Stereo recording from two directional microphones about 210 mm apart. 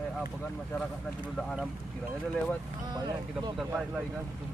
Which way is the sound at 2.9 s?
20° right (ahead or behind).